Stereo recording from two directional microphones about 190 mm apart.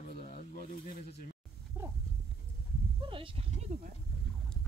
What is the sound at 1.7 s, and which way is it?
Speech, 15° right (ahead or behind).